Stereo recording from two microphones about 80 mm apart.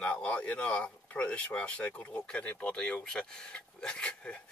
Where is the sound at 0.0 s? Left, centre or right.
Centre.